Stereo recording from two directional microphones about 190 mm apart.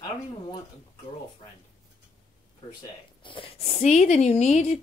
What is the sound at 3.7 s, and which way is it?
A woman's voice, 35° left (ahead or behind).